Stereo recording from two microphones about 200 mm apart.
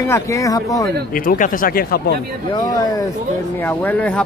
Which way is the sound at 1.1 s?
45° left (ahead or behind).